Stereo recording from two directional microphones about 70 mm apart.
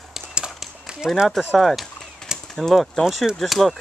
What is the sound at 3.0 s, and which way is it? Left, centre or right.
Speech, centre.